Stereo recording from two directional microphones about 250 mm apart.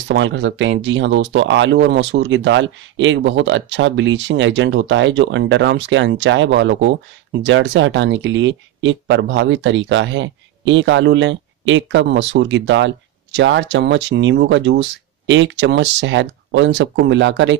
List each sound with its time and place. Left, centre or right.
0.1 s speech: right